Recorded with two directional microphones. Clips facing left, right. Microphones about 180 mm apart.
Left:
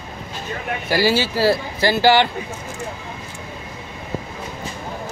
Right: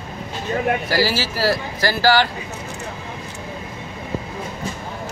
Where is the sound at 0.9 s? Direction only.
20° left (ahead or behind).